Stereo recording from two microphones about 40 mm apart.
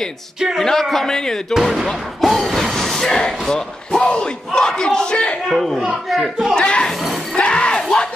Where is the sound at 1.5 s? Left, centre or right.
Centre.